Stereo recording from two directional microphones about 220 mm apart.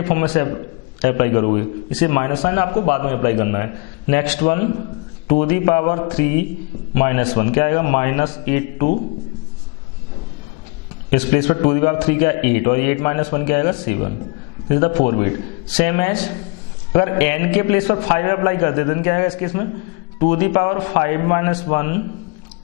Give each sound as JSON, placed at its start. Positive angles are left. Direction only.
{"t": 0.0, "sound": "a man's voice", "side_deg": 15}
{"t": 11.1, "sound": "a man's voice", "side_deg": 10}